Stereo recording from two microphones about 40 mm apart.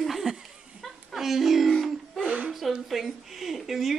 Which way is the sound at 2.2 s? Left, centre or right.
Right.